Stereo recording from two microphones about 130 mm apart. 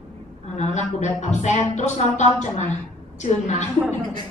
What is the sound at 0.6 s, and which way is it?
A woman's voice, 60° left (ahead or behind).